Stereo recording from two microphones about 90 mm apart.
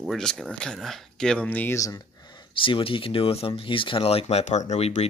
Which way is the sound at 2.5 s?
80° left.